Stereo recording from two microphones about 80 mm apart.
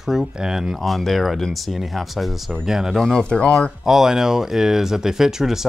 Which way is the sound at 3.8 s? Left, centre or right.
Centre.